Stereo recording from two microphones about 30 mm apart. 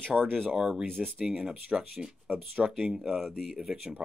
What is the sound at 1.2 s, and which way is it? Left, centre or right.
Speech, right.